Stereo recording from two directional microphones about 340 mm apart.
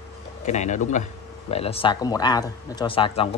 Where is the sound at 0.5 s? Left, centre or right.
Left.